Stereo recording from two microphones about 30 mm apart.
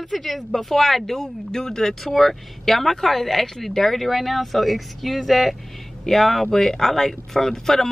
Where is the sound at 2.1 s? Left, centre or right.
Centre.